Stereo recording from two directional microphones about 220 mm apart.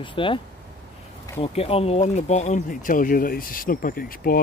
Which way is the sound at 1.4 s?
25° left (ahead or behind).